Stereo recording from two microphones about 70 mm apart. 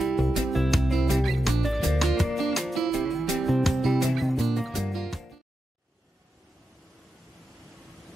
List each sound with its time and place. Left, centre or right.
0.0 s music: centre